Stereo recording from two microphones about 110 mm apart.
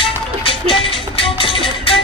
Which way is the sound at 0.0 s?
55° left (ahead or behind).